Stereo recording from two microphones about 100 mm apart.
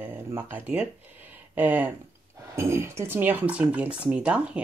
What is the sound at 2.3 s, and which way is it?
Speech, 25° right (ahead or behind).